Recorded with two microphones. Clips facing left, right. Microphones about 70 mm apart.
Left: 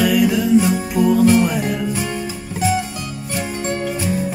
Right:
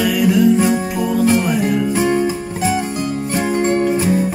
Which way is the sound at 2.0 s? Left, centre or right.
Right.